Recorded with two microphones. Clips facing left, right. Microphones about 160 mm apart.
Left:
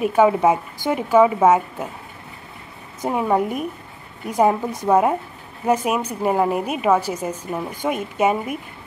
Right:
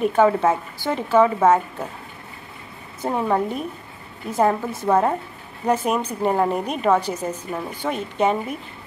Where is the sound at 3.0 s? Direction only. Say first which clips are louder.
Left 2 dB; 10° left (ahead or behind).